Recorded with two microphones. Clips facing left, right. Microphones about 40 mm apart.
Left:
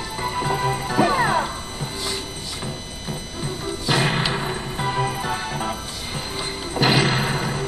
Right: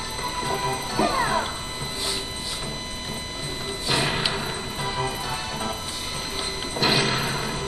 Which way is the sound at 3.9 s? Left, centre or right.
Left.